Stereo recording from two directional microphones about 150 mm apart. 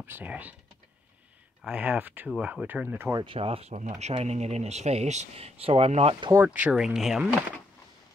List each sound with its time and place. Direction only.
0.0 s speech: 10° right (ahead or behind)
1.6 s speech: 10° right (ahead or behind)
3.2 s speech: 35° right (ahead or behind)
6.3 s speech: 10° right (ahead or behind)